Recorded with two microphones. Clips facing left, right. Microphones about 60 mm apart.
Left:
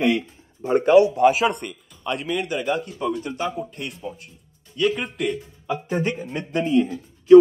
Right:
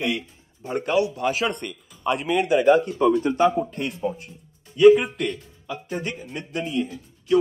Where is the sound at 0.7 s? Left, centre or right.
Left.